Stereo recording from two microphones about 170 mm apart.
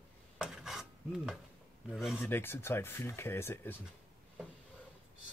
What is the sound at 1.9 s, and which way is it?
Speech, 5° right (ahead or behind).